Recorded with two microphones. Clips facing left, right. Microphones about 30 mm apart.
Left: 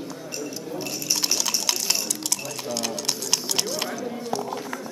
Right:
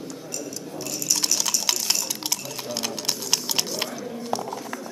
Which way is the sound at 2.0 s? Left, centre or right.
Centre.